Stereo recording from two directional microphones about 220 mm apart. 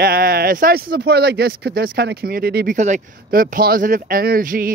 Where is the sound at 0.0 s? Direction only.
45° right (ahead or behind).